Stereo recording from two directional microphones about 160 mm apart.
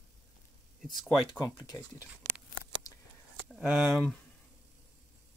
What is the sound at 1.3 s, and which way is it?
Speech, 25° left (ahead or behind).